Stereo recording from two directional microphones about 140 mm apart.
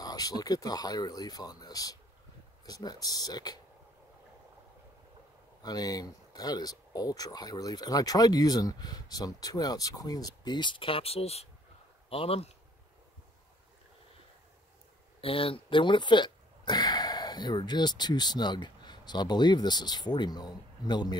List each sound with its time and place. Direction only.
0.0 s speech: 25° left (ahead or behind)
5.6 s speech: 30° left (ahead or behind); by 12.5 s 45° left (ahead or behind)
15.1 s speech: 40° left (ahead or behind)